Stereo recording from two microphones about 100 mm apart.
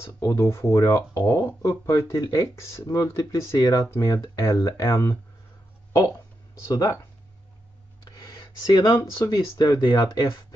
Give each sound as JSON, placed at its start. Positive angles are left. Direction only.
{"t": 0.0, "sound": "speech", "side_deg": 30}
{"t": 8.0, "sound": "speech", "side_deg": 35}